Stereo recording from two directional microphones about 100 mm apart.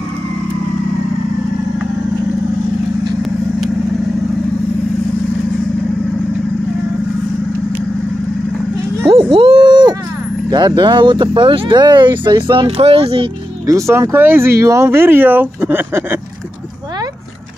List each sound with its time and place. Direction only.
9.3 s a sound: 65° right (ahead or behind)
10.5 s speech: 45° right (ahead or behind); by 13.3 s 70° right (ahead or behind)
13.7 s speech: 30° right (ahead or behind)